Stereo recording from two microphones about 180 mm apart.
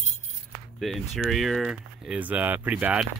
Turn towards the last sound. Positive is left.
turn(degrees=-10)  # may be behind; listen again after turning